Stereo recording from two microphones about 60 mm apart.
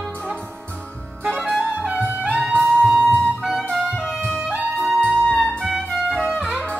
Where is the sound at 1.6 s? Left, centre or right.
Right.